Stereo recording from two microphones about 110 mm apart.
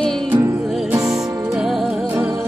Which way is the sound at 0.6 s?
Centre (ahead or behind).